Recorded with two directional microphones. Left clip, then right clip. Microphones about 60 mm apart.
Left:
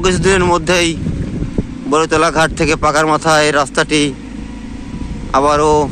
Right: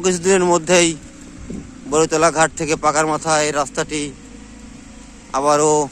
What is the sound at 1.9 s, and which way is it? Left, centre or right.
Speech, right.